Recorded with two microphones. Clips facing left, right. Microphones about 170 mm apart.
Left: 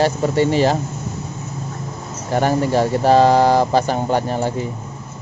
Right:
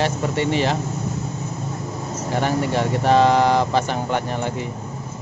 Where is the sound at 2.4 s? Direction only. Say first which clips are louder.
Left 5 dB; 35° left (ahead or behind).